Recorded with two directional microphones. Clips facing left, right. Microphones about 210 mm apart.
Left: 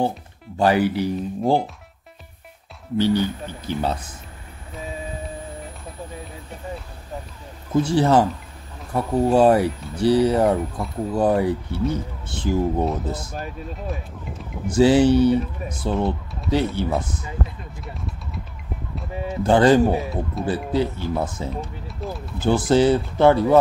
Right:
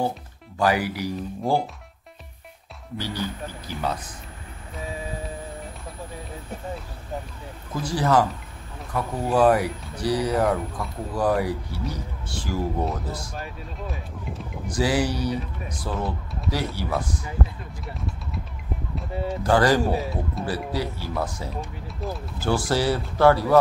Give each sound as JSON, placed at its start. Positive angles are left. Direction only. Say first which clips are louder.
{"t": 0.6, "sound": "speech", "louder": "left 5 dB", "side_deg": 25}
{"t": 3.0, "sound": "speech", "louder": "left 10 dB", "side_deg": 25}
{"t": 7.7, "sound": "speech", "louder": "left 5 dB", "side_deg": 25}
{"t": 13.8, "sound": "speech", "louder": "left 3 dB", "side_deg": 0}
{"t": 14.7, "sound": "speech", "louder": "left 9 dB", "side_deg": 25}
{"t": 19.4, "sound": "speech", "louder": "left 5 dB", "side_deg": 25}
{"t": 20.0, "sound": "speech", "louder": "left 2 dB", "side_deg": 0}
{"t": 20.4, "sound": "speech", "louder": "left 8 dB", "side_deg": 20}
{"t": 21.8, "sound": "a sound", "louder": "left 1 dB", "side_deg": 0}
{"t": 22.4, "sound": "speech", "louder": "left 6 dB", "side_deg": 20}